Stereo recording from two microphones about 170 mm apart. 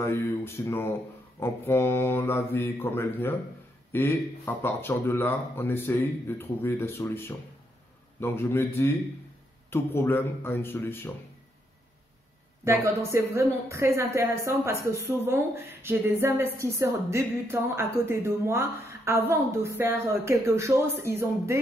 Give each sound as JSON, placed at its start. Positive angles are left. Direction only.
{"t": 0.0, "sound": "speech", "side_deg": 15}
{"t": 12.6, "sound": "speech", "side_deg": -15}